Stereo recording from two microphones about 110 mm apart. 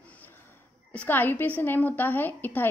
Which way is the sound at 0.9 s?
15° left (ahead or behind).